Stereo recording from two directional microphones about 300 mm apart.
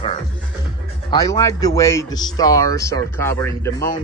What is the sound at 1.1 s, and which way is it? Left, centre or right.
A man's voice, centre.